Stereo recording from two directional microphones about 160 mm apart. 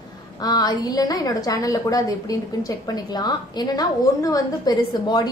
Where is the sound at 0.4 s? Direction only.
25° left (ahead or behind).